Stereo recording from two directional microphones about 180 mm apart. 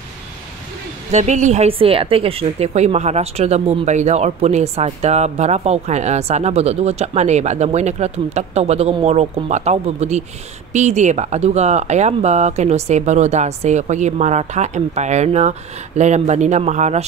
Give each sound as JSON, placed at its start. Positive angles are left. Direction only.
{"t": 1.1, "sound": "a woman's voice", "side_deg": -40}